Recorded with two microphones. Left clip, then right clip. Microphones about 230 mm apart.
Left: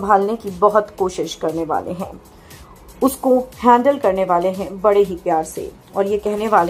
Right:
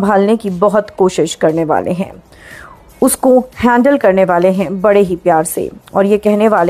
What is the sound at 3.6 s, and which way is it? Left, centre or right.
A woman's voice, right.